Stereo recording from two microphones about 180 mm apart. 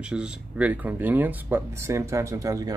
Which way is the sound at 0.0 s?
5° right (ahead or behind).